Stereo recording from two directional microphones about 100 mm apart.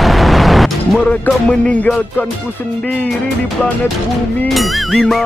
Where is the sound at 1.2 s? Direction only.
10° left (ahead or behind).